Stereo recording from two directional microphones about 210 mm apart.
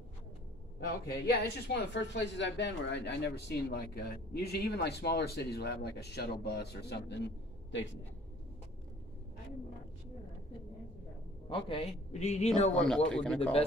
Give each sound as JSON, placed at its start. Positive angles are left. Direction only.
{"t": 0.7, "sound": "speech", "side_deg": 50}
{"t": 11.4, "sound": "a man's voice", "side_deg": 25}
{"t": 12.7, "sound": "speech", "side_deg": 5}